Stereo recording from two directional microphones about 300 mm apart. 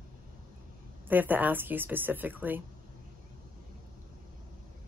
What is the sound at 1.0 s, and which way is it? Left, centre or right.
Speech, centre.